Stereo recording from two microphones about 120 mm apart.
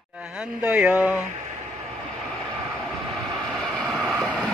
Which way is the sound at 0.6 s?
10° right (ahead or behind).